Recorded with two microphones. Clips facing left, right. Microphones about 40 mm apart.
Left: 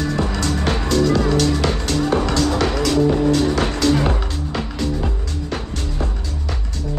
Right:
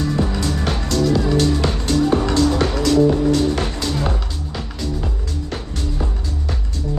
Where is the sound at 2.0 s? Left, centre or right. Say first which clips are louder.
Right 1 dB; left.